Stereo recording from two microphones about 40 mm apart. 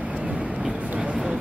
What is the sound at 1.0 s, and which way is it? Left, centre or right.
Vehicle, centre.